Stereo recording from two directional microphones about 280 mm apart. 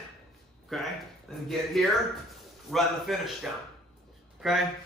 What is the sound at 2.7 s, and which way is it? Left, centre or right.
Speech, centre.